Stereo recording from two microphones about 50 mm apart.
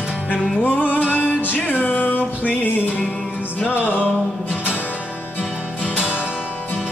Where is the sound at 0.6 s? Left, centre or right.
Left.